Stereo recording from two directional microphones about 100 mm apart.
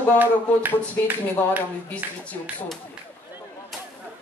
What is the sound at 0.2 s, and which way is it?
Speech, 20° right (ahead or behind).